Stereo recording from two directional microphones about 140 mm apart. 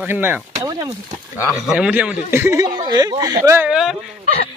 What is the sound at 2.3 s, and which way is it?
Speech, 20° right (ahead or behind).